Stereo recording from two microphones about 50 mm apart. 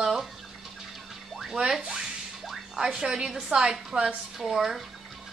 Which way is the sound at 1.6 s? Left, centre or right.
Centre.